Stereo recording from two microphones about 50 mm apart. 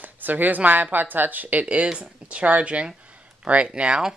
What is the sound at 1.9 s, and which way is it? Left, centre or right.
Speech, centre.